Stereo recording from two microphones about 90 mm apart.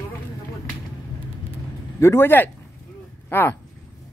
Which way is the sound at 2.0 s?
30° left (ahead or behind).